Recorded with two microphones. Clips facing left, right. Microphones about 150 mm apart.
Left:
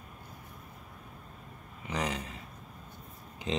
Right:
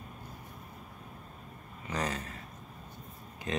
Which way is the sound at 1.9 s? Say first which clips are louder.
Left 1 dB; 15° left (ahead or behind).